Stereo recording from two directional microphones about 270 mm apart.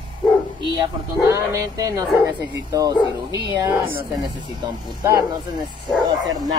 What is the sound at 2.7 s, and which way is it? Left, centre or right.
Speech, centre.